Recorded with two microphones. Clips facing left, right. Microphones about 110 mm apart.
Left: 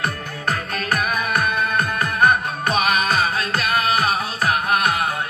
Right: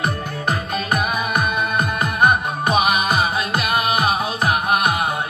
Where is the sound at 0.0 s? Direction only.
15° right (ahead or behind).